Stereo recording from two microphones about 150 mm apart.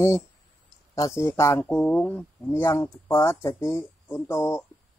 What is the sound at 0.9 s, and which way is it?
Speech, 20° left (ahead or behind).